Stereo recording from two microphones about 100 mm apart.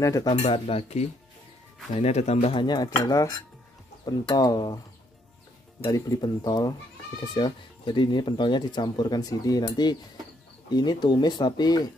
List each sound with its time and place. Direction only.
0.0 s speech: 35° left (ahead or behind)
0.5 s speech: 80° left
2.6 s speech: 45° left (ahead or behind)
5.9 s speech: 40° left (ahead or behind)